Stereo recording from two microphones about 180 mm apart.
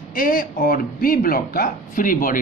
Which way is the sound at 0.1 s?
50° left (ahead or behind).